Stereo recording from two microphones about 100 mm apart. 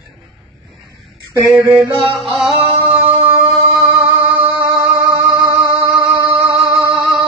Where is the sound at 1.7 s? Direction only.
35° right (ahead or behind).